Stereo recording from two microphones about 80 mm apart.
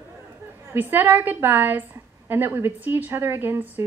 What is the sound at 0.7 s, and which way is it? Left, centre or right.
Speech, right.